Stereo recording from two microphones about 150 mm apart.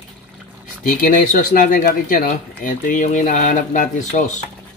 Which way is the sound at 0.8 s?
65° left (ahead or behind).